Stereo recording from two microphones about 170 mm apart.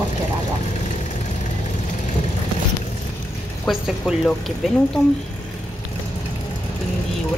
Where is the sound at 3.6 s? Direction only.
Centre (ahead or behind).